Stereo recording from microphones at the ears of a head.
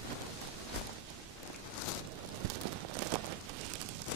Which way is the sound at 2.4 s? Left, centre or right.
Right.